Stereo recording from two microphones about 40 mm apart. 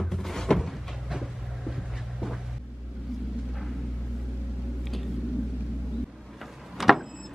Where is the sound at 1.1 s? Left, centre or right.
Centre.